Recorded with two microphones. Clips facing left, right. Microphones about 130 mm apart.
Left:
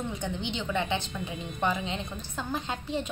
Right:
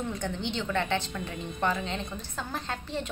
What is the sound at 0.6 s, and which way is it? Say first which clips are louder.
A woman's voice: right 1 dB; 10° left (ahead or behind).